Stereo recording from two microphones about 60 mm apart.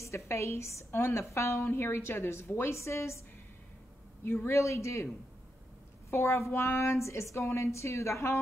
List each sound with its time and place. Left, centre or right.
0.0 s a woman's voice: left
4.2 s speech: left
4.6 s speech: left
6.0 s a woman's voice: left